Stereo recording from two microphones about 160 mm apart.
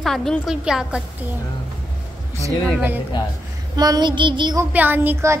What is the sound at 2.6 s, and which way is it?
Child singing, 10° right (ahead or behind).